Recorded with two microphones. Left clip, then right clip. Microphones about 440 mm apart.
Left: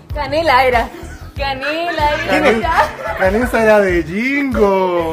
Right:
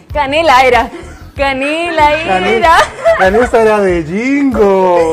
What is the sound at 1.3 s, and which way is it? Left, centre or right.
Music, right.